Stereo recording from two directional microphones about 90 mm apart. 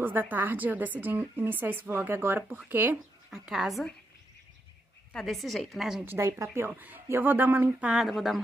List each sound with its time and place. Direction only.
0.0 s a woman's voice: 20° right (ahead or behind)
3.3 s a woman's voice: 5° right (ahead or behind)
5.1 s a woman's voice: centre (ahead or behind)
6.0 s speech: 30° right (ahead or behind)
6.7 s a woman's voice: 20° right (ahead or behind); by 8.4 s centre (ahead or behind)